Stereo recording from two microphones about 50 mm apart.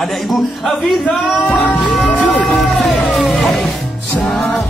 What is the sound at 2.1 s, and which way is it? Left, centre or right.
Music, centre.